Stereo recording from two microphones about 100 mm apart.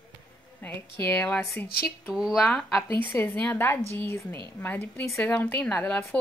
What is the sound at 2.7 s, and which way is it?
A woman's voice, 30° left (ahead or behind).